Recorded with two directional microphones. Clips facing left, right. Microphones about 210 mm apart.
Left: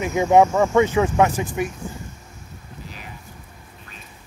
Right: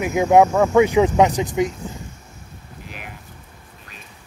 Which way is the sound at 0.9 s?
15° right (ahead or behind).